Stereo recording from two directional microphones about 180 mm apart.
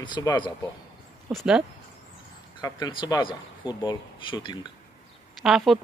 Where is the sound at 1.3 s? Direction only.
5° right (ahead or behind).